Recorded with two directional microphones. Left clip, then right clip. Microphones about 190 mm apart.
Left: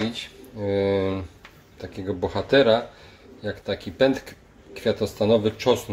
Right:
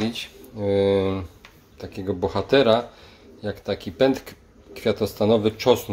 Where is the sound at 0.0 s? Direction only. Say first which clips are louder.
Right 1 dB; 15° right (ahead or behind).